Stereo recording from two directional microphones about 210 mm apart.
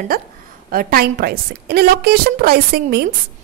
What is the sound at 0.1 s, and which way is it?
A woman's voice, 45° right (ahead or behind).